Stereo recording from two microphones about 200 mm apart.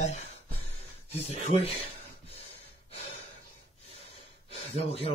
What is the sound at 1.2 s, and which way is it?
Speech, 35° left (ahead or behind).